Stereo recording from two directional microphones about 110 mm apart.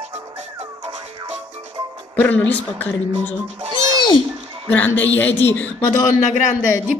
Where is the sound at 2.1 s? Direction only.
10° left (ahead or behind).